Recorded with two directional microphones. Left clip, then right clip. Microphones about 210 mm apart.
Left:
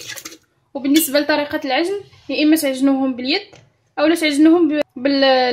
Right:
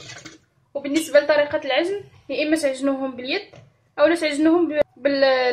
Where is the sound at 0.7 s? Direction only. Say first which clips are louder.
Left 4 dB; 55° left (ahead or behind); by 5.5 s 40° left (ahead or behind).